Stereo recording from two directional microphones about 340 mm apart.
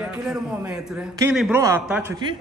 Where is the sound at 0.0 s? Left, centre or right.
Centre.